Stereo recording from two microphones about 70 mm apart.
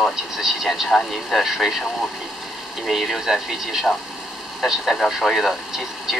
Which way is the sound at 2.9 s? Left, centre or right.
Centre.